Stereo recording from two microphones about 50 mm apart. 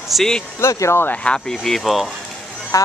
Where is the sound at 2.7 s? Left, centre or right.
Left.